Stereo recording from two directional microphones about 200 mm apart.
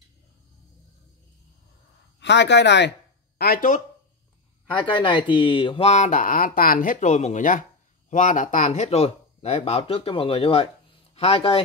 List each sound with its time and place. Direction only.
2.1 s speech: 60° left (ahead or behind)
3.3 s speech: 50° left (ahead or behind)
4.8 s speech: 25° left (ahead or behind)